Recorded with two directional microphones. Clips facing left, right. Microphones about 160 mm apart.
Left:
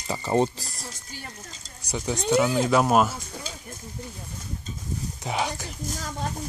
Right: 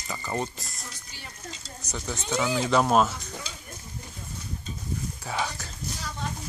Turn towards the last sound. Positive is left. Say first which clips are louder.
# left 3 dB
turn(degrees=45)  # may be behind; listen again after turning